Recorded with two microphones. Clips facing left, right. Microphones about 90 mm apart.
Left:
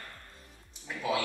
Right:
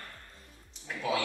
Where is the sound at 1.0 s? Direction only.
10° left (ahead or behind).